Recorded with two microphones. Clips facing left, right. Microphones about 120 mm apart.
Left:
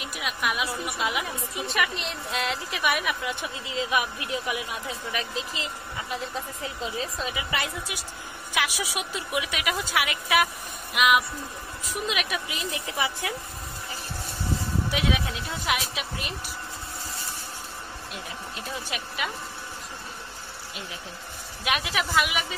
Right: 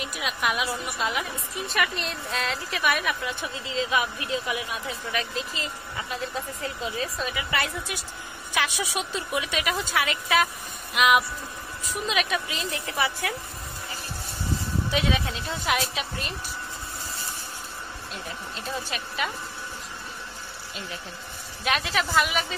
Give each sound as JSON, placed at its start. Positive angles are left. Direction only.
{"t": 0.0, "sound": "a woman's voice", "side_deg": 0}
{"t": 6.6, "sound": "a woman's voice", "side_deg": 20}
{"t": 8.5, "sound": "a woman's voice", "side_deg": 5}
{"t": 14.9, "sound": "speech", "side_deg": 5}
{"t": 18.9, "sound": "a woman's voice", "side_deg": 15}
{"t": 21.6, "sound": "a woman's voice", "side_deg": 10}